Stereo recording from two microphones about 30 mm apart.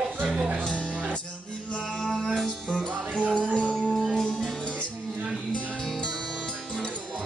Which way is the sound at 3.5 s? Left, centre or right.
Left.